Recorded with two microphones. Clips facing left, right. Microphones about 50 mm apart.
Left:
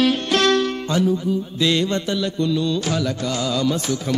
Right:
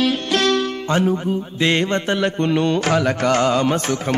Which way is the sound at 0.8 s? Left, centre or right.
Right.